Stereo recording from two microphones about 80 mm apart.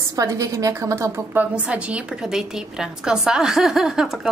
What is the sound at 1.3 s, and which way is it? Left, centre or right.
Speech, centre.